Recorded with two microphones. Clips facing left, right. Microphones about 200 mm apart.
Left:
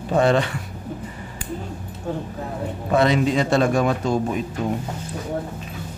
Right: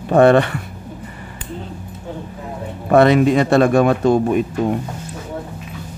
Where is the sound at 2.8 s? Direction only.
60° right (ahead or behind).